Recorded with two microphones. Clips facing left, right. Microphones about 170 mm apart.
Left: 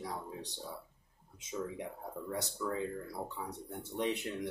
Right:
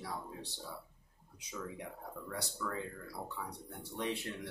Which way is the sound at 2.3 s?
20° left (ahead or behind).